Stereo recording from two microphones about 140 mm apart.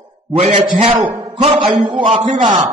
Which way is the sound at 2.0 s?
35° right (ahead or behind).